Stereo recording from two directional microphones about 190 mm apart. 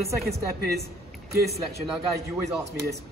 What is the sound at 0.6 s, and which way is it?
Speech, 55° right (ahead or behind).